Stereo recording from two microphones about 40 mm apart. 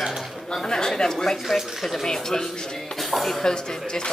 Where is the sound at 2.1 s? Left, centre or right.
Centre.